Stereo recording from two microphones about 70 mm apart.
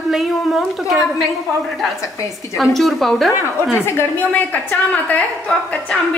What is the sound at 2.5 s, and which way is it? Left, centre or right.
Speech, centre.